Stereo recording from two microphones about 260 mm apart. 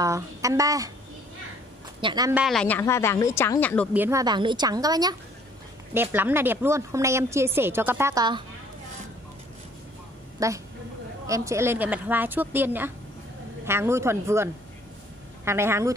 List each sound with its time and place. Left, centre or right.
0.0 s a woman's voice: centre
2.0 s a woman's voice: centre
2.4 s speech: centre
3.9 s a woman's voice: centre
10.4 s a woman's voice: centre